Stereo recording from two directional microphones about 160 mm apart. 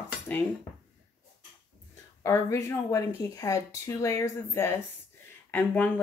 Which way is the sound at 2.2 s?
20° left (ahead or behind).